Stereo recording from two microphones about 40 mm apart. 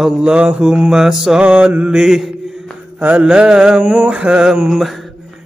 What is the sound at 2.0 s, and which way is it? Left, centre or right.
Mantra, centre.